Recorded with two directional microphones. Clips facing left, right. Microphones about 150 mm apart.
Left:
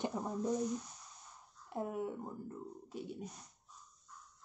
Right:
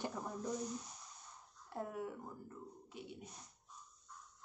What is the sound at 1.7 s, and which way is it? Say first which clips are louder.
Speech: left 4 dB; 20° left (ahead or behind).